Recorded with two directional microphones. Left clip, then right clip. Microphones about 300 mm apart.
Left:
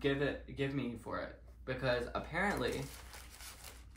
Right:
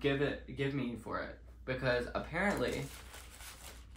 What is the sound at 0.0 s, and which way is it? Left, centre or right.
Speech, centre.